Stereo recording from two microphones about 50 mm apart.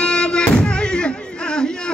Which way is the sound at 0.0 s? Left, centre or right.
Centre.